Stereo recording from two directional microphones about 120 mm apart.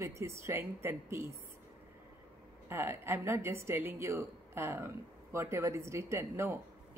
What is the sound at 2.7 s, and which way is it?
A woman's voice, 20° right (ahead or behind).